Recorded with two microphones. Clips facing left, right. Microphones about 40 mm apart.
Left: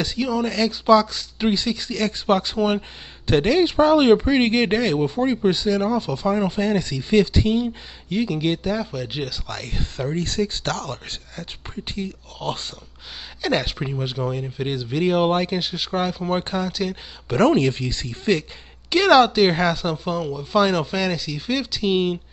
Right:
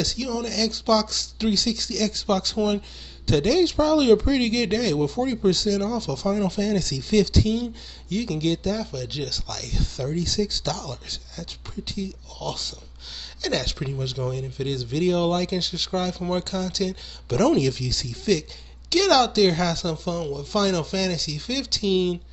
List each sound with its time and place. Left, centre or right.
0.0 s speech: left
13.4 s speech: left